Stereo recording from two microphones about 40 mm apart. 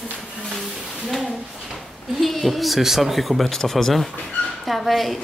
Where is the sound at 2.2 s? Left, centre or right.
Centre.